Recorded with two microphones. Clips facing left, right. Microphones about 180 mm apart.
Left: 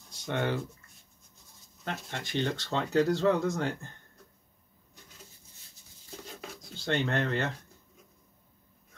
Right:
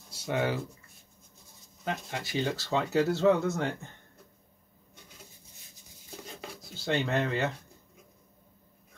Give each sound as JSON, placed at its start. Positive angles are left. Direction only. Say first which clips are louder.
{"t": 0.1, "sound": "speech", "louder": "right 1 dB", "side_deg": -5}
{"t": 1.9, "sound": "speech", "louder": "right 2 dB", "side_deg": -5}
{"t": 6.0, "sound": "a sound", "louder": "even", "side_deg": -10}
{"t": 6.3, "sound": "rub", "louder": "right 1 dB", "side_deg": -5}